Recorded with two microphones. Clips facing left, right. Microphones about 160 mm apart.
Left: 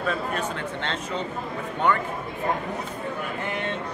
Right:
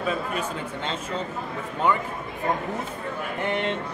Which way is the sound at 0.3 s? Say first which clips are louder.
Left 1 dB; 10° right (ahead or behind).